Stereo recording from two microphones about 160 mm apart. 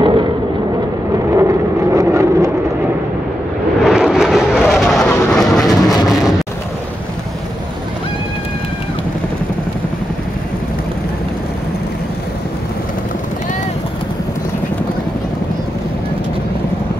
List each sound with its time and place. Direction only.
0.0 s vehicle: 30° right (ahead or behind)
1.3 s vehicle: 20° right (ahead or behind)
3.8 s vehicle: 5° right (ahead or behind)